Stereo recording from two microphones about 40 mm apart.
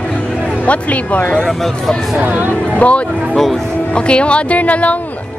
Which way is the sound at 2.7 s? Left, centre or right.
Left.